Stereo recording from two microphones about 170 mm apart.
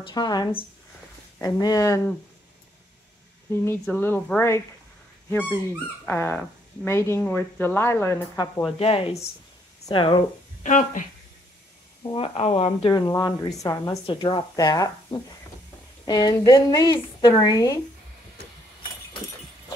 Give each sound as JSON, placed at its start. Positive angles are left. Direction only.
{"t": 0.0, "sound": "speech", "side_deg": 25}
{"t": 3.8, "sound": "speech", "side_deg": 10}
{"t": 8.7, "sound": "speech", "side_deg": 35}
{"t": 10.6, "sound": "speech", "side_deg": 50}
{"t": 12.0, "sound": "speech", "side_deg": 30}
{"t": 12.9, "sound": "speech", "side_deg": 20}